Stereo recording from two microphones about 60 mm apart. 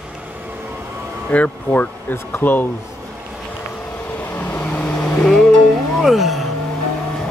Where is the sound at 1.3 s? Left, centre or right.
Left.